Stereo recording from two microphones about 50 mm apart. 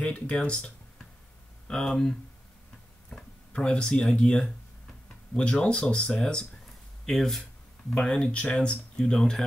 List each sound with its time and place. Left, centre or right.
0.0 s speech: left
3.2 s speech: left
5.3 s speech: centre